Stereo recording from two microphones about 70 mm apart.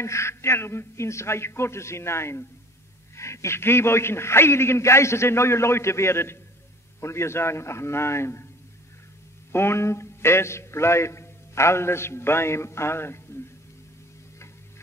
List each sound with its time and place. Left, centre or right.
0.0 s a man's voice: left
9.5 s a man's voice: left